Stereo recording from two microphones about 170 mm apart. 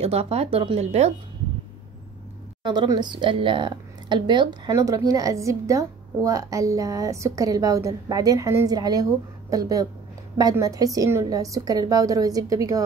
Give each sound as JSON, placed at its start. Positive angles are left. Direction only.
{"t": 0.0, "sound": "speech", "side_deg": -35}
{"t": 2.6, "sound": "speech", "side_deg": -25}